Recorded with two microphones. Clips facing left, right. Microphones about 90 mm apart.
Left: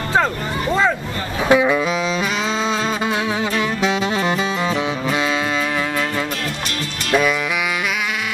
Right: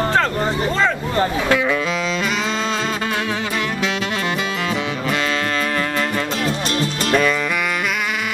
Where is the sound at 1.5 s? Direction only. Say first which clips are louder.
Left 8 dB; 15° left (ahead or behind).